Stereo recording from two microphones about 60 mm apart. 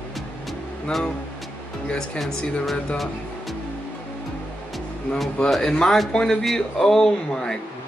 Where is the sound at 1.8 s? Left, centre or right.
Centre.